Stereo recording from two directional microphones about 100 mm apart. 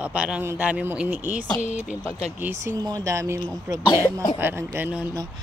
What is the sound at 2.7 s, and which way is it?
Speech, 40° right (ahead or behind).